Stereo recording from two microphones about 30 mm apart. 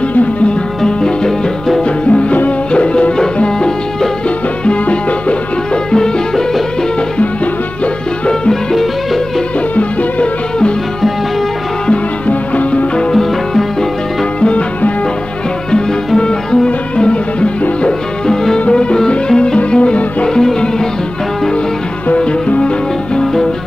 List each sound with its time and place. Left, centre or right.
0.8 s music: left
2.0 s music: left
5.9 s music: left
12.3 s music: left
13.1 s music: centre
16.2 s music: left
18.3 s music: left
18.7 s music: left